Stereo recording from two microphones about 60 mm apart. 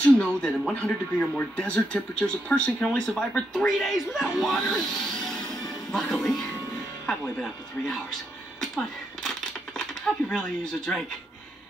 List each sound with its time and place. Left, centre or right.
0.0 s speech: centre
10.3 s speech: centre